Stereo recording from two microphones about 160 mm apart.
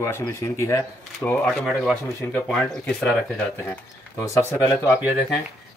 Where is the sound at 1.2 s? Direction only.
5° left (ahead or behind).